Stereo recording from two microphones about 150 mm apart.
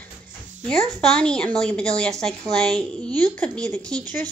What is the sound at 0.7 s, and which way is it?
A child's voice, 5° left (ahead or behind).